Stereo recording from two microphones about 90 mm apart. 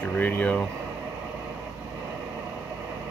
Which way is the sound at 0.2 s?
20° left (ahead or behind).